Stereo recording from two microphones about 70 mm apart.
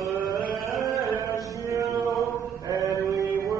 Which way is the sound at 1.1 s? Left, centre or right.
Right.